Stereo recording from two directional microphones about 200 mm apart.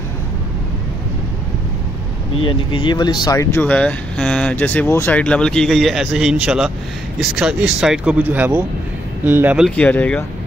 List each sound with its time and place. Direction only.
2.3 s speech: 25° left (ahead or behind)
3.6 s speech: 5° left (ahead or behind)
9.8 s speech: 5° left (ahead or behind)